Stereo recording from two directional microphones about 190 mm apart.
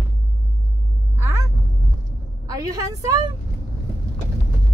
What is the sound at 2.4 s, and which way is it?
Speech, 20° right (ahead or behind).